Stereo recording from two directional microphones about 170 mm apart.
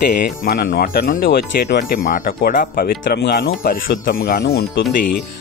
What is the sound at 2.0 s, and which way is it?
Speech, 55° left (ahead or behind).